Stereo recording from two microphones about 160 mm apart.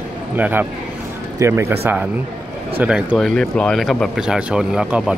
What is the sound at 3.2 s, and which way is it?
Speech, 5° left (ahead or behind).